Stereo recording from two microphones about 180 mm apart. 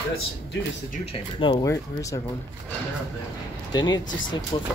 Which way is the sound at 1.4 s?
25° left (ahead or behind).